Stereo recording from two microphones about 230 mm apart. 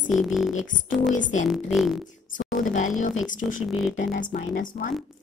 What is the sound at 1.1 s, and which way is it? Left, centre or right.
Speech, left.